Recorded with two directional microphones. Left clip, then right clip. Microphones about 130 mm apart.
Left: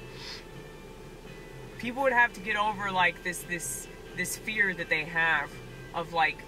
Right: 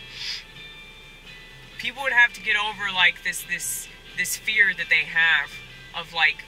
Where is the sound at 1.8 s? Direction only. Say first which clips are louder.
Right 5 dB; 25° right (ahead or behind).